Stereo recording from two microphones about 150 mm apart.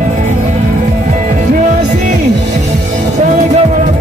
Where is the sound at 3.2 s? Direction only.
50° right (ahead or behind).